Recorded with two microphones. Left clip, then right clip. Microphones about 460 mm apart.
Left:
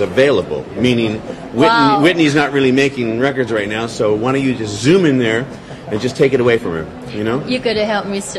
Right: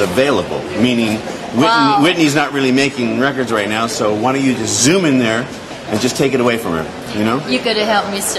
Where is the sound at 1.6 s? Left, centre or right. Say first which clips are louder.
Left 1 dB; left.